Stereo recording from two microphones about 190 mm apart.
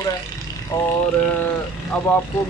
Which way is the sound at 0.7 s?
15° left (ahead or behind).